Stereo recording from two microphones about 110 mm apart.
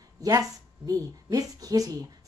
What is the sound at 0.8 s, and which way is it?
Speech, 35° right (ahead or behind).